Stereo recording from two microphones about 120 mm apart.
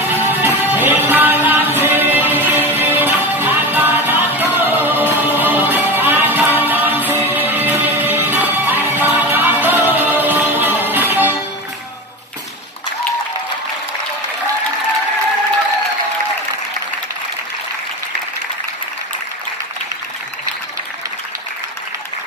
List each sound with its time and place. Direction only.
0.1 s music: 15° right (ahead or behind)